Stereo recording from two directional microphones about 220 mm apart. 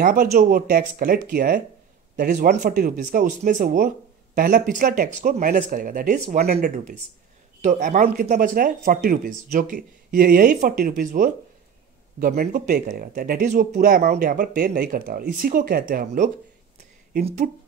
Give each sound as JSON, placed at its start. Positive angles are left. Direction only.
{"t": 0.0, "sound": "speech", "side_deg": -40}